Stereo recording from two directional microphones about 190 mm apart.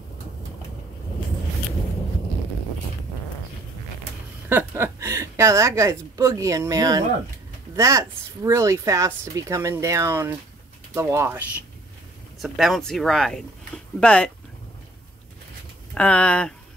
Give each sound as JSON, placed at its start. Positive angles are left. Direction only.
{"t": 4.5, "sound": "a woman's voice", "side_deg": -10}
{"t": 12.4, "sound": "speech", "side_deg": 0}
{"t": 15.9, "sound": "speech", "side_deg": 5}